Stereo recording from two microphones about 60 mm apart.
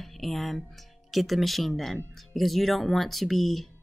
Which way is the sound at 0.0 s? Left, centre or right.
Centre.